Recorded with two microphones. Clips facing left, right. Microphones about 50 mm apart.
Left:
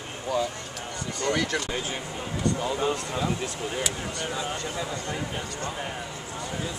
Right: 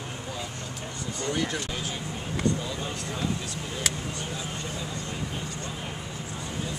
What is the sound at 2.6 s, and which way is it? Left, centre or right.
Speech, left.